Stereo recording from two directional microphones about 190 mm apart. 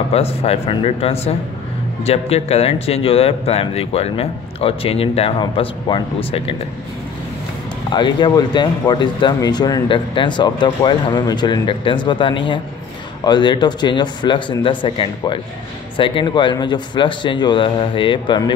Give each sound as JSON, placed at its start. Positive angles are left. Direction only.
{"t": 0.1, "sound": "a man's voice", "side_deg": 30}
{"t": 7.9, "sound": "speech", "side_deg": 25}